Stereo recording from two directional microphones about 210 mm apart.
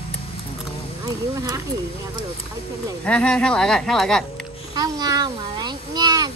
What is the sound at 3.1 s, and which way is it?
Speech, 5° left (ahead or behind).